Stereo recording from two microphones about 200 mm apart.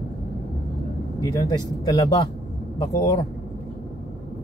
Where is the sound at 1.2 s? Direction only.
20° left (ahead or behind).